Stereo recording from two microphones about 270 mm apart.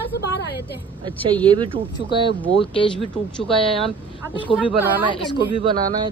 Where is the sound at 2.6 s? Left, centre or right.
Centre.